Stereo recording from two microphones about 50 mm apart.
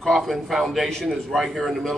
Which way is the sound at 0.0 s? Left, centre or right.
Centre.